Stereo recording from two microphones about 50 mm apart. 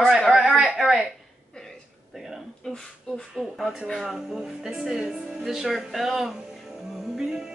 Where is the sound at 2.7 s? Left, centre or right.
Centre.